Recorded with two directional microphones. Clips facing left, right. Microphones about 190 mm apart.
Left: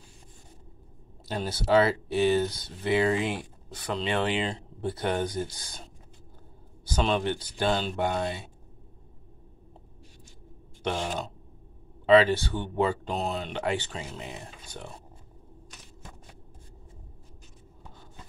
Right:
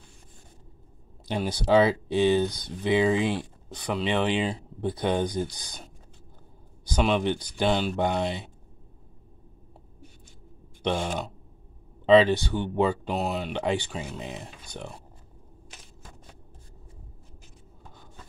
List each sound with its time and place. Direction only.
1.2 s speech: 15° right (ahead or behind)
6.9 s speech: 10° right (ahead or behind)
12.1 s speech: 20° right (ahead or behind)